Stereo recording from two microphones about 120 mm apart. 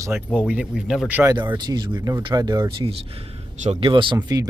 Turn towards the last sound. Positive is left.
turn(degrees=-35)  # may be behind; listen again after turning